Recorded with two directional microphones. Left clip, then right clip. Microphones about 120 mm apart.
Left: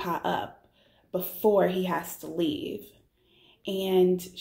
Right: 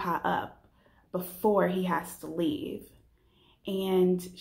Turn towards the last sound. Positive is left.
turn(degrees=20)  # may be behind; listen again after turning